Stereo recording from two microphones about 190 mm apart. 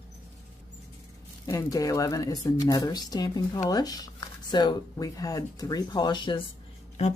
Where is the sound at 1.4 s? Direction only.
15° left (ahead or behind).